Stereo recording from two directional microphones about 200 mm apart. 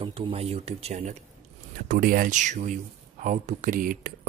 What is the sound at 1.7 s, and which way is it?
Speech, 45° right (ahead or behind).